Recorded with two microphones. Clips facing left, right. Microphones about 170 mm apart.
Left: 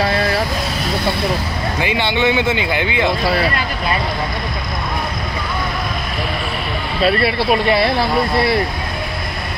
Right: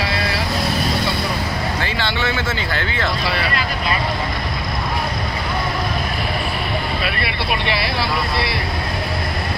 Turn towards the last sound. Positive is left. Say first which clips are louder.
# left 7 dB
turn(degrees=45)  # may be behind; listen again after turning